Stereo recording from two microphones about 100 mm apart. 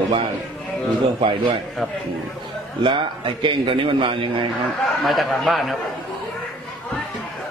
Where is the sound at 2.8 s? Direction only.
55° right (ahead or behind).